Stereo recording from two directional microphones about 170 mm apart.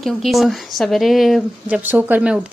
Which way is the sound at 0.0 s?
Centre (ahead or behind).